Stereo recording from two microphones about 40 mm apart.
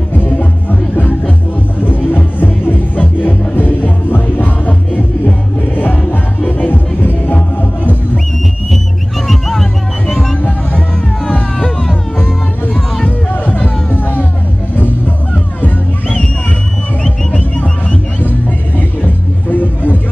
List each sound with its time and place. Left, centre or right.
0.1 s music: left
6.7 s music: left
9.3 s music: centre
13.5 s music: left
17.3 s music: left
19.5 s vehicle: left